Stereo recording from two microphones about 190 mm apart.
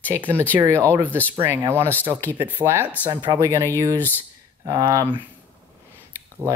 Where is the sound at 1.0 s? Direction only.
10° left (ahead or behind).